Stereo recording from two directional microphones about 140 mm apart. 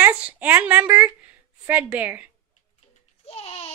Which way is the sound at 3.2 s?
45° left (ahead or behind).